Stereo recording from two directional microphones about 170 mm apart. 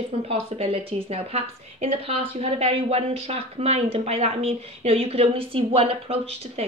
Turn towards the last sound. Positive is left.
turn(degrees=-35)  # may be behind; listen again after turning